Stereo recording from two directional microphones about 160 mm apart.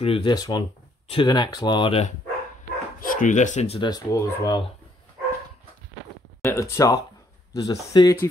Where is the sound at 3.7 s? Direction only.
25° left (ahead or behind).